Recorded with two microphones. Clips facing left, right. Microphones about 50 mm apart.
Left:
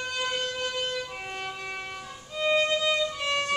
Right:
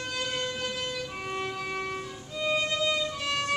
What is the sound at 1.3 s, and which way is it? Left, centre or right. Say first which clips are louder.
Music: right 3 dB; centre.